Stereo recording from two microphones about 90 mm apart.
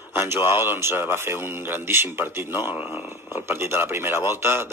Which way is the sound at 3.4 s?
25° right (ahead or behind).